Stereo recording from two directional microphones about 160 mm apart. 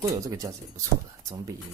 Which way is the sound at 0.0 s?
20° right (ahead or behind).